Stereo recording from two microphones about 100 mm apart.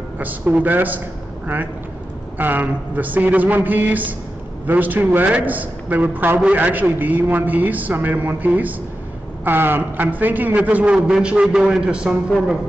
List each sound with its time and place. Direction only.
0.2 s a man's voice: 15° right (ahead or behind)
2.3 s a man's voice: 20° right (ahead or behind)